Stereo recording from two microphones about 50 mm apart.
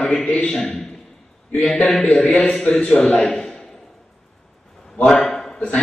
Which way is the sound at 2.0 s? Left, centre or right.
Left.